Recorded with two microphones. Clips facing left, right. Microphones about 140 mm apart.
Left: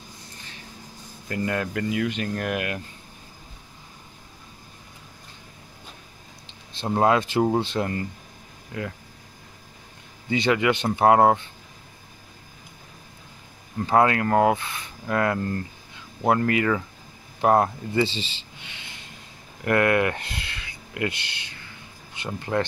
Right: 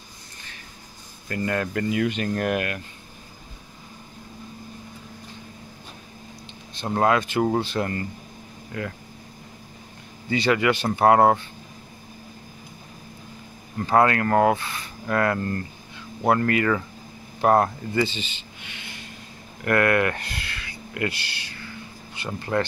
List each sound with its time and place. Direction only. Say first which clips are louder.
1.3 s speech: right 1 dB; 10° left (ahead or behind)
6.9 s speech: left 1 dB; 15° left (ahead or behind)
7.2 s speech: left 1 dB; 30° left (ahead or behind)
7.8 s speech: even; 15° left (ahead or behind)
10.3 s speech: even; 20° left (ahead or behind)
13.7 s speech: even; 10° left (ahead or behind)
17.9 s speech: left 1 dB; 30° left (ahead or behind)
19.6 s speech: even; 15° left (ahead or behind)